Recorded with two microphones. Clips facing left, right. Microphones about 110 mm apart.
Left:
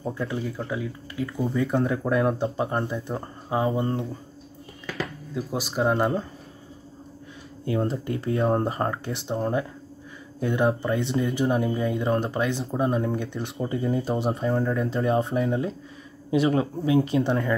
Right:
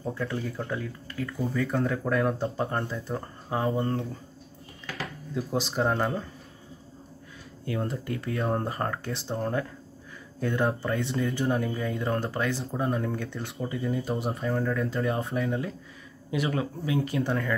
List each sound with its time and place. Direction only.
0.0 s speech: 10° left (ahead or behind)
1.2 s speech: 25° left (ahead or behind)
5.3 s speech: 5° left (ahead or behind)
7.6 s speech: 25° left (ahead or behind)
13.7 s speech: 35° left (ahead or behind)